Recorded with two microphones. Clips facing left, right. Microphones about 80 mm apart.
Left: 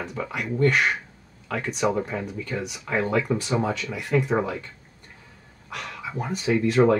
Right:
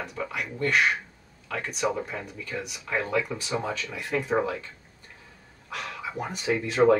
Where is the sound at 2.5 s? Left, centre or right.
Centre.